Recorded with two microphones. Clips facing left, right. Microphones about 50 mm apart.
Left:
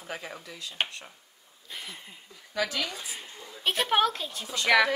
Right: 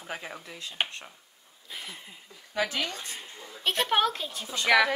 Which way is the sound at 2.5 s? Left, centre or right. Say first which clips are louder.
Right 1 dB; right.